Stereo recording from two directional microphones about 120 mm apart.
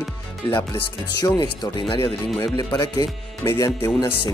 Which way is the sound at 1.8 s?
45° left (ahead or behind).